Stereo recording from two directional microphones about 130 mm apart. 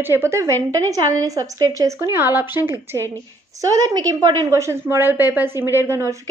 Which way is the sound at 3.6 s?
30° right (ahead or behind).